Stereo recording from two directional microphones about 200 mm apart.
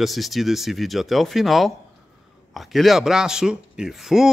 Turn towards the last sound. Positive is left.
turn(degrees=0)  # may be behind; listen again after turning